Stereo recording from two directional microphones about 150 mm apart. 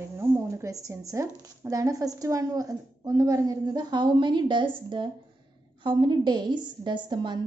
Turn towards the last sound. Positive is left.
turn(degrees=-30)  # may be behind; listen again after turning